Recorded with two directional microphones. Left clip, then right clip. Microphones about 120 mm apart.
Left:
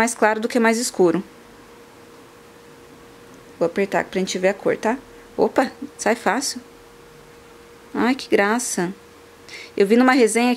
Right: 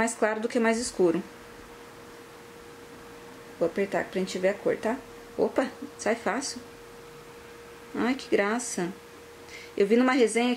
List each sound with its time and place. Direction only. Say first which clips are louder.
0.0 s speech: left 8 dB; 40° left (ahead or behind)
3.5 s speech: left 7 dB; 45° left (ahead or behind)
7.9 s speech: left 7 dB; 40° left (ahead or behind)